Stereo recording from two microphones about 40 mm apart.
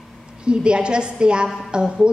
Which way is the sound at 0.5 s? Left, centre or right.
Right.